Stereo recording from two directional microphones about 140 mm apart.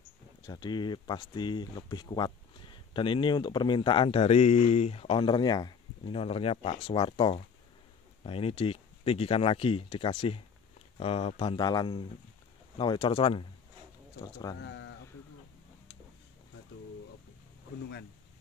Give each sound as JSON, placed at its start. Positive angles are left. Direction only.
{"t": 0.5, "sound": "speech", "side_deg": 30}
{"t": 14.2, "sound": "speech", "side_deg": 25}